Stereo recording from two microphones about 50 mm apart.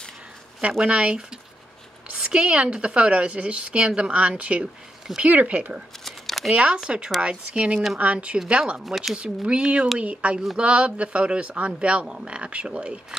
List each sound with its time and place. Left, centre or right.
0.6 s speech: right
6.0 s a sound: centre
6.5 s speech: centre
8.8 s speech: centre
9.5 s speech: right